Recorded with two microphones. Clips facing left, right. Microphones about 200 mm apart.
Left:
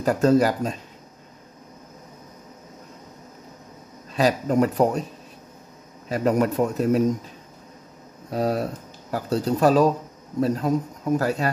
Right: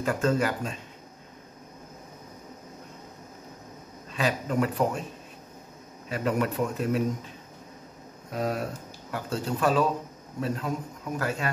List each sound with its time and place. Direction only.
0.0 s a man's voice: 40° left (ahead or behind)
4.1 s a man's voice: 40° left (ahead or behind)
6.0 s a man's voice: 40° left (ahead or behind)
8.3 s a man's voice: 35° left (ahead or behind)